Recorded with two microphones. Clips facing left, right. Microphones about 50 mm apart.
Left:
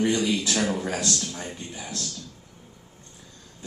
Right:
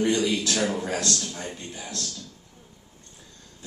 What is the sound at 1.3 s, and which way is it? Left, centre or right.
Speech, centre.